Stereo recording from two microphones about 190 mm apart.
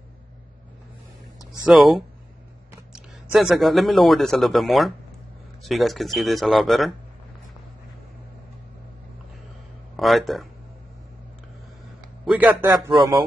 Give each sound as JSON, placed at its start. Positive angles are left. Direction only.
{"t": 1.7, "sound": "a man's voice", "side_deg": 0}
{"t": 9.9, "sound": "speech", "side_deg": 0}
{"t": 12.3, "sound": "a man's voice", "side_deg": -10}